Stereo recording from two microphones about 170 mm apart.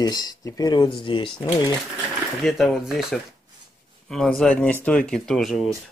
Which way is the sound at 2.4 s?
Centre (ahead or behind).